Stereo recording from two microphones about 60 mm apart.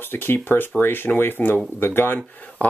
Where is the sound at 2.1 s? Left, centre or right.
Centre.